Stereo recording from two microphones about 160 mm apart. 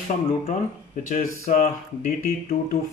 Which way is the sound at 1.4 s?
50° left (ahead or behind).